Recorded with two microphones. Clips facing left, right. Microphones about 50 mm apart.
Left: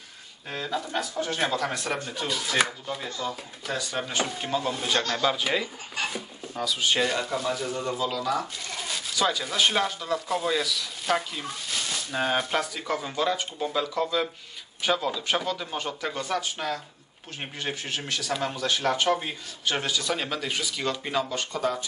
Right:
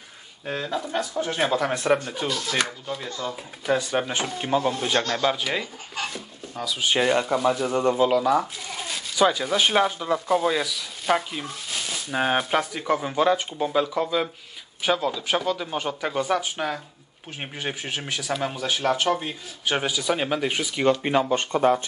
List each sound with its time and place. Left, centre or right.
0.5 s speech: centre
2.2 s speech: centre
3.6 s speech: centre
7.6 s speech: right
8.1 s speech: right
8.8 s speech: centre
12.2 s speech: centre
19.6 s speech: centre; by 21.8 s right